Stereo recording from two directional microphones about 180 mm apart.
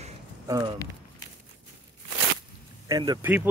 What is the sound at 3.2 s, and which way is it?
Speech, 10° right (ahead or behind).